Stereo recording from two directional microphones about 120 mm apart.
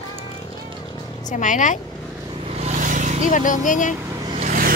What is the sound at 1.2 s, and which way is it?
Speech, 90° left.